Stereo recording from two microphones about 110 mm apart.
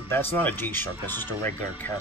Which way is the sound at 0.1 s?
20° left (ahead or behind).